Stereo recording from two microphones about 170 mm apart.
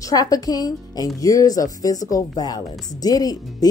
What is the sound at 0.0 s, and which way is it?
Speech, 20° left (ahead or behind).